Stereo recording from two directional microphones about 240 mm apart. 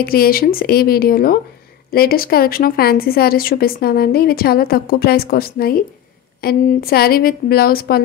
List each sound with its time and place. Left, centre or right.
0.0 s a woman's voice: left